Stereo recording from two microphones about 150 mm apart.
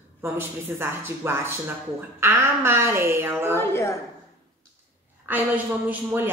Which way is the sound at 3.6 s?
15° left (ahead or behind).